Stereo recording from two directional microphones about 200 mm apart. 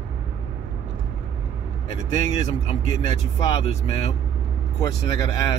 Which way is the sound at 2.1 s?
20° left (ahead or behind).